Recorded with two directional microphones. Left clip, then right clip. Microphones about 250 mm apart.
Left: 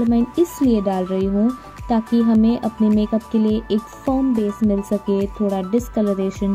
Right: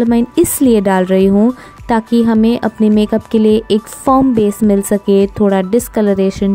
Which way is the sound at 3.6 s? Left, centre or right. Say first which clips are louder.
Right 9 dB; right.